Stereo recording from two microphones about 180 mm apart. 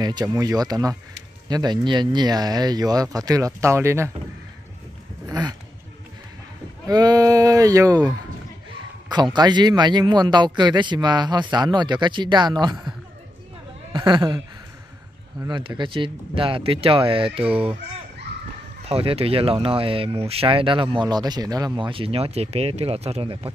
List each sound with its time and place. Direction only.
0.0 s a man's voice: 20° right (ahead or behind)
5.3 s a sound: 20° right (ahead or behind)
6.9 s a man's voice: 20° right (ahead or behind)
9.1 s a man's voice: 25° right (ahead or behind)
13.9 s a man's voice: 25° right (ahead or behind)
15.4 s a man's voice: 25° right (ahead or behind)
18.9 s speech: 30° right (ahead or behind)